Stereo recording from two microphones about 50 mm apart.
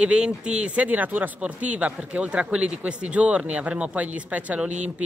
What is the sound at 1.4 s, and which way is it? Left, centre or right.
Speech, right.